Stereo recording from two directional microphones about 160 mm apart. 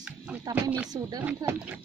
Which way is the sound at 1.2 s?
10° right (ahead or behind).